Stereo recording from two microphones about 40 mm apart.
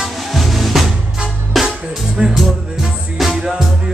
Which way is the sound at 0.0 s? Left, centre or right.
Centre.